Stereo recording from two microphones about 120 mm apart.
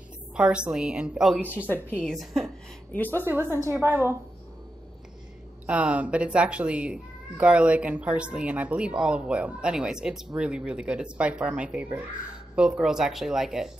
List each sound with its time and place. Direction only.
0.4 s speech: 10° right (ahead or behind)
2.9 s a woman's voice: 15° left (ahead or behind)
3.6 s a woman's voice: 20° right (ahead or behind)
5.7 s speech: 10° right (ahead or behind)